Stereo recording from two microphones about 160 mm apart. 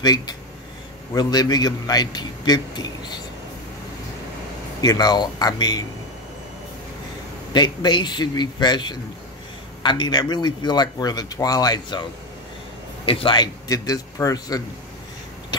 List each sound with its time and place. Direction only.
0.0 s speech: 25° left (ahead or behind)
4.8 s speech: 25° left (ahead or behind)
7.5 s speech: 25° left (ahead or behind)
13.0 s speech: 35° left (ahead or behind)